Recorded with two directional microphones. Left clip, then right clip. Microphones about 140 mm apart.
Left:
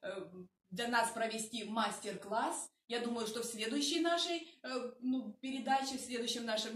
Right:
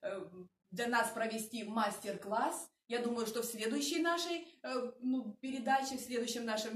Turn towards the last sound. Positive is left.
turn(degrees=-30)  # may be behind; listen again after turning